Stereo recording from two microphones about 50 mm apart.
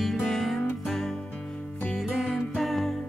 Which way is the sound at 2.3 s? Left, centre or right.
Centre.